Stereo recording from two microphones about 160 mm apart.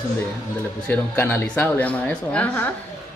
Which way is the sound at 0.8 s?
10° left (ahead or behind).